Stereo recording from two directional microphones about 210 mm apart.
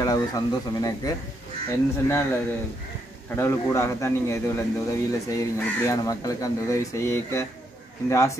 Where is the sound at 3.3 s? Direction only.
10° left (ahead or behind).